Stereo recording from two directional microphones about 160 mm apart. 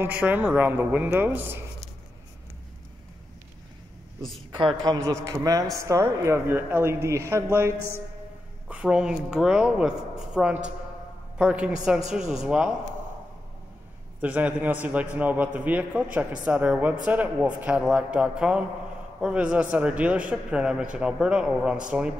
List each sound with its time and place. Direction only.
0.0 s a man's voice: 10° right (ahead or behind)
4.5 s a man's voice: 30° right (ahead or behind); by 12.7 s 5° right (ahead or behind)
14.2 s a man's voice: 10° right (ahead or behind)